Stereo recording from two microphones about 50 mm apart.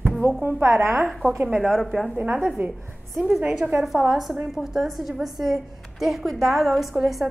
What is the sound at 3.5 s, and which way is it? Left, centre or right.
Speech, right.